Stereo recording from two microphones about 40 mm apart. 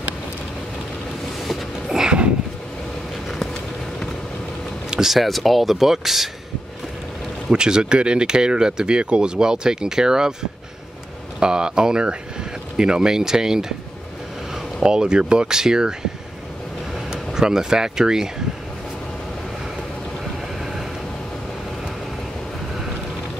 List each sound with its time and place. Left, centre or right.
1.9 s a sound: centre
4.9 s speech: centre
7.5 s speech: right
11.3 s speech: centre
17.1 s speech: centre